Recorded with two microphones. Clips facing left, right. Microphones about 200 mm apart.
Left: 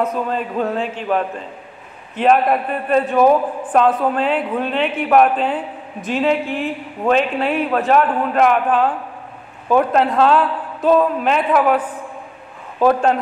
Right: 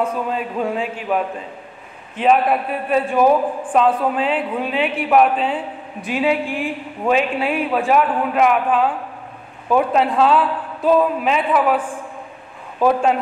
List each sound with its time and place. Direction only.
0.0 s a man's voice: 10° right (ahead or behind)
12.8 s a man's voice: 5° right (ahead or behind)